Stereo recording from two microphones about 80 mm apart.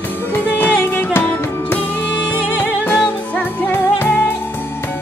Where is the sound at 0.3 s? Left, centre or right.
Left.